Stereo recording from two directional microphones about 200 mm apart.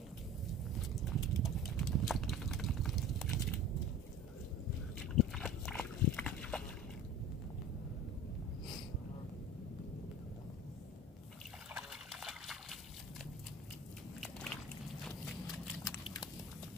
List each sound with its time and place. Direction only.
0.5 s vehicle: centre (ahead or behind)
1.3 s a sound: centre (ahead or behind)
5.3 s horse: 5° left (ahead or behind)
11.7 s liquid: centre (ahead or behind)
14.2 s dog: 5° left (ahead or behind)
15.0 s a sound: centre (ahead or behind)
16.0 s biting: 20° left (ahead or behind)